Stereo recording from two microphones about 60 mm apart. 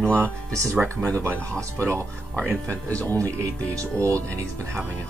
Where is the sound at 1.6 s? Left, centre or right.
Right.